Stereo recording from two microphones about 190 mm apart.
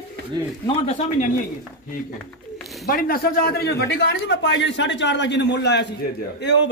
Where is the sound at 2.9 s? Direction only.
50° left (ahead or behind).